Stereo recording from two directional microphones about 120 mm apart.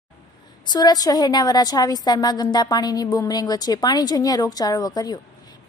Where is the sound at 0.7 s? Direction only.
35° left (ahead or behind).